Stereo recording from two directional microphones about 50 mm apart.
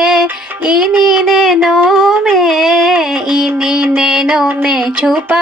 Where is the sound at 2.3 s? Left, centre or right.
Centre.